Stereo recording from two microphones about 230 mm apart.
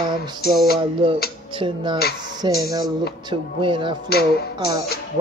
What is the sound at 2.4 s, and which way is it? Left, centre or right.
Speech, centre.